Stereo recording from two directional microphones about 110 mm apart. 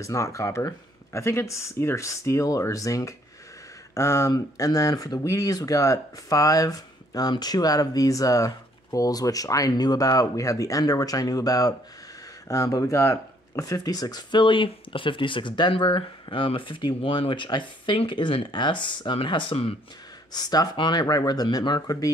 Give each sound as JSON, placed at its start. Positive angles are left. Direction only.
{"t": 0.0, "sound": "speech", "side_deg": 30}
{"t": 20.3, "sound": "speech", "side_deg": 40}